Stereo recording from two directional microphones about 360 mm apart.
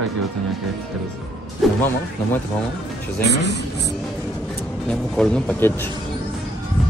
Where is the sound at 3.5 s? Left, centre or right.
Left.